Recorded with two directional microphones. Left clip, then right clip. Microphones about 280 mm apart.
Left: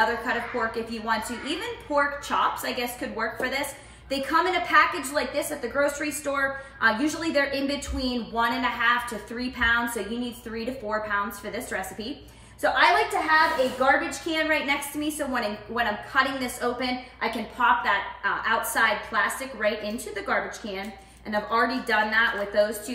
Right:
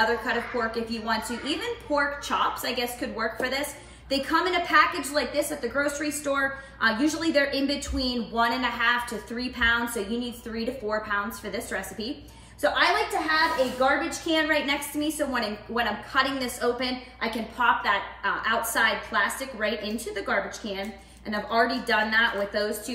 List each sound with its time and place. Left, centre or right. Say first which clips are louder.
0.0 s a woman's voice: even; centre